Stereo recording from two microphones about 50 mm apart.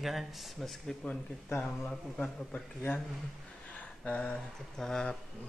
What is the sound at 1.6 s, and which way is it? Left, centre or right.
Speech, centre.